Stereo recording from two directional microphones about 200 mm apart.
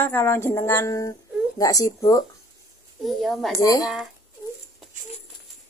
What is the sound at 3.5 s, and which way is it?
Speech, 15° left (ahead or behind).